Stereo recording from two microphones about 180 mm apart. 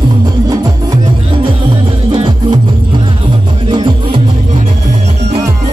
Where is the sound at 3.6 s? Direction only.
25° right (ahead or behind).